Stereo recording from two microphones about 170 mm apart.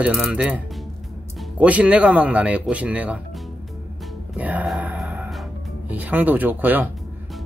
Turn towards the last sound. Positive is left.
turn(degrees=-10)  # may be behind; listen again after turning